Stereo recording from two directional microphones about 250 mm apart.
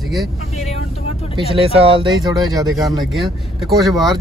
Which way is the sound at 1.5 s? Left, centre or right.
Right.